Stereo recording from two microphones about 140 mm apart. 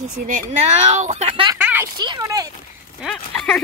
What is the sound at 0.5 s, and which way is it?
Speech, 55° right (ahead or behind).